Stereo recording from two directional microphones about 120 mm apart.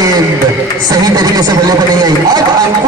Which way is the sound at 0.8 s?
30° right (ahead or behind).